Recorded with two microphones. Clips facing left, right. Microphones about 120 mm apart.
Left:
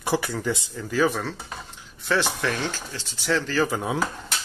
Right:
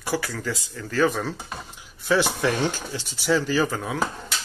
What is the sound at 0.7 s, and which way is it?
Speech, 5° left (ahead or behind).